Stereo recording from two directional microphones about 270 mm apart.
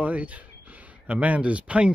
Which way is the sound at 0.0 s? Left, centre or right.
Centre.